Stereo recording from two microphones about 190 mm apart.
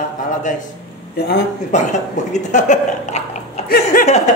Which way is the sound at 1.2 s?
60° left (ahead or behind).